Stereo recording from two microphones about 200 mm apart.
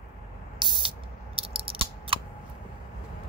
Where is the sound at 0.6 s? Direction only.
20° right (ahead or behind).